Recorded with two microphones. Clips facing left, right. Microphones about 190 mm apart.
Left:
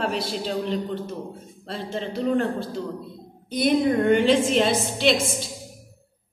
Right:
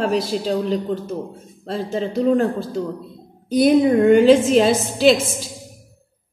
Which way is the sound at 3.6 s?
40° right (ahead or behind).